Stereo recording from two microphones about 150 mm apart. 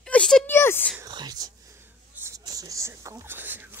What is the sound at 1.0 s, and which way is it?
Whispering, 25° right (ahead or behind).